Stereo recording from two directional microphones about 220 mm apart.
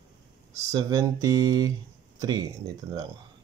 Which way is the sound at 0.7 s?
15° right (ahead or behind).